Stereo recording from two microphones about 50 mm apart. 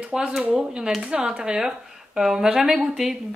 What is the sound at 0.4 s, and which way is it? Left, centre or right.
Speech, centre.